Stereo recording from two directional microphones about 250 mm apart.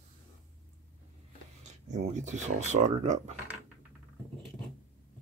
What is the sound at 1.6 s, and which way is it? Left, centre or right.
Speech, right.